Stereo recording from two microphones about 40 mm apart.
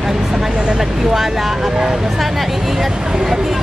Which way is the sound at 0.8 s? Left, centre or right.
Centre.